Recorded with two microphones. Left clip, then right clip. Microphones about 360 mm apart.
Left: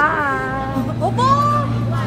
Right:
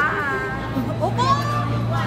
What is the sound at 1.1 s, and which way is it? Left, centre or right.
Music, centre.